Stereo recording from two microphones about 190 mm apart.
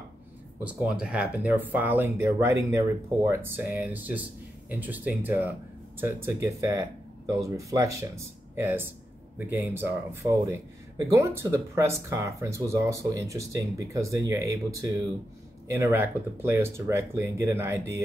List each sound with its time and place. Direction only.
0.7 s speech: 5° right (ahead or behind)